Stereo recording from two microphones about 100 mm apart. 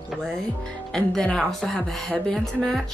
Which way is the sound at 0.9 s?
5° left (ahead or behind).